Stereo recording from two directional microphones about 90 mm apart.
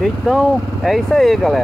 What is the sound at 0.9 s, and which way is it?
Speech, centre (ahead or behind).